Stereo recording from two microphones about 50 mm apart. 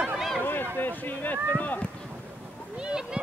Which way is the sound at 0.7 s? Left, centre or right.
Left.